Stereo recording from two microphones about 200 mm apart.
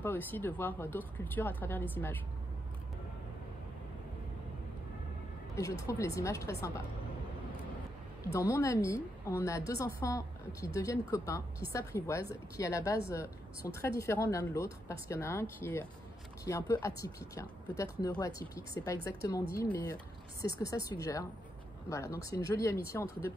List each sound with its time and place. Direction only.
0.0 s speech: 10° left (ahead or behind)
5.6 s speech: 15° left (ahead or behind)
8.3 s speech: 15° left (ahead or behind)